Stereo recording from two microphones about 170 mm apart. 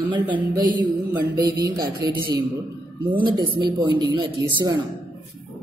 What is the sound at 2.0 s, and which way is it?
Speech, 65° right (ahead or behind).